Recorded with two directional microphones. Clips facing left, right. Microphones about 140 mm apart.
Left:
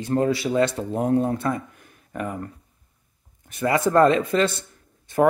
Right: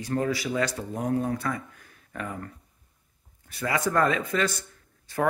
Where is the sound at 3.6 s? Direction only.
30° left (ahead or behind).